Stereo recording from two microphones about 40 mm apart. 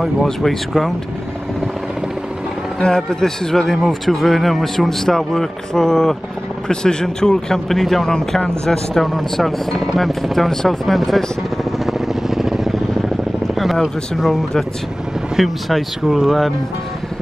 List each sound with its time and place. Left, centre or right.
0.0 s speech: centre
2.8 s a man's voice: centre
3.8 s a man's voice: centre
10.5 s a man's voice: centre
11.8 s vehicle: centre
14.1 s speech: centre